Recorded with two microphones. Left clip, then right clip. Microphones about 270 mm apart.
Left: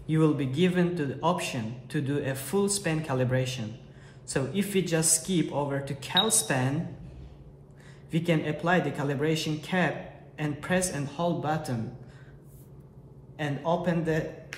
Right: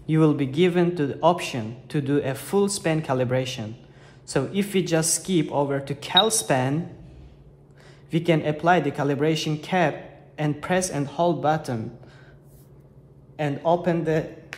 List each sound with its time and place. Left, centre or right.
0.0 s a man's voice: right
8.1 s a man's voice: right
13.4 s a man's voice: right